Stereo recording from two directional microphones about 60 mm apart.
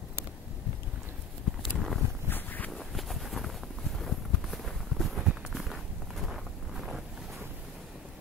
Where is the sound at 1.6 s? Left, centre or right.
Centre.